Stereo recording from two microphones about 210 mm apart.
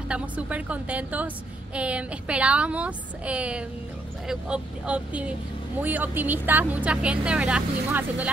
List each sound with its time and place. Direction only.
0.1 s speech: 5° right (ahead or behind)